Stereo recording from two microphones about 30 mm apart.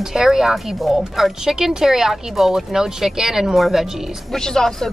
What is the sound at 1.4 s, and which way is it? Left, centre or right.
Speech, centre.